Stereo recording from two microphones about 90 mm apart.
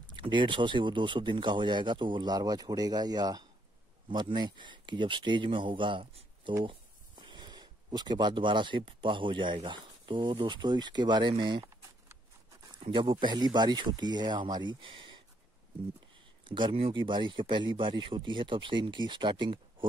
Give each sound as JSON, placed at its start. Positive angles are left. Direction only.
{"t": 0.1, "sound": "speech", "side_deg": -60}
{"t": 12.7, "sound": "speech", "side_deg": -70}
{"t": 16.4, "sound": "speech", "side_deg": -65}